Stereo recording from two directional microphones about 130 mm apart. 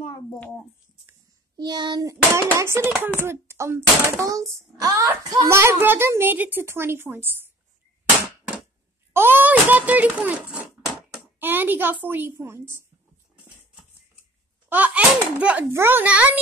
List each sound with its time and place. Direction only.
1.6 s a child's voice: 35° right (ahead or behind); by 7.4 s 15° right (ahead or behind)
9.1 s a child's voice: 15° right (ahead or behind)
14.7 s a child's voice: 10° right (ahead or behind)